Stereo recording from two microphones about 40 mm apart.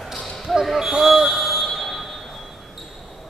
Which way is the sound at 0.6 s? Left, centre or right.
Centre.